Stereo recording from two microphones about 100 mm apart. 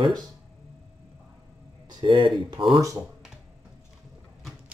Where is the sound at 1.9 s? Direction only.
50° right (ahead or behind).